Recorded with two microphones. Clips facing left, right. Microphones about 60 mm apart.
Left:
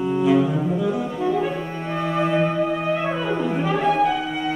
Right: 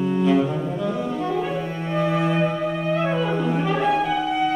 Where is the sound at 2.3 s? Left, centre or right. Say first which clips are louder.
Left 2 dB; centre.